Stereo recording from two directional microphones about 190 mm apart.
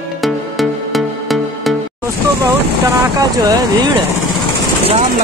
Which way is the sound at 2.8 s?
20° right (ahead or behind).